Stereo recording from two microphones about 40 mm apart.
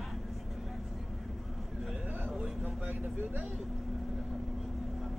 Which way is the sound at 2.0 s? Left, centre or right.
Right.